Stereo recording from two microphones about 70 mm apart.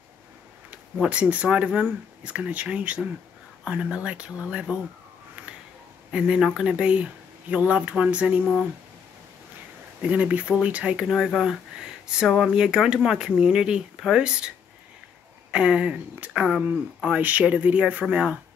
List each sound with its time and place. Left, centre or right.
1.2 s speech: centre
6.1 s speech: centre
10.0 s speech: centre
11.1 s speech: centre
15.5 s speech: centre